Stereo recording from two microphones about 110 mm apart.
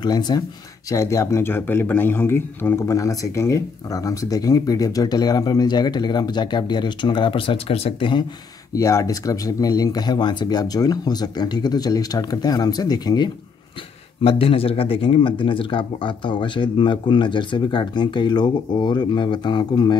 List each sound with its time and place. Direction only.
0.0 s speech: 40° left (ahead or behind)
0.8 s speech: 30° left (ahead or behind); by 8.1 s 65° left (ahead or behind)
8.7 s speech: 30° left (ahead or behind)
14.2 s speech: 60° left (ahead or behind); by 20.0 s 40° left (ahead or behind)